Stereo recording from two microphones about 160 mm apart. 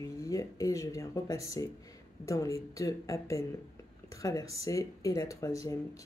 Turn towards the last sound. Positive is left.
turn(degrees=20)  # may be behind; listen again after turning